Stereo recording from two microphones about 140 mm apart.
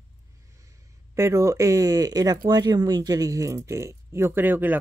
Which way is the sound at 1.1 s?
20° right (ahead or behind).